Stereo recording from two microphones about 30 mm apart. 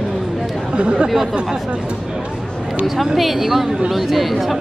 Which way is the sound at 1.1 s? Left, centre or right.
Centre.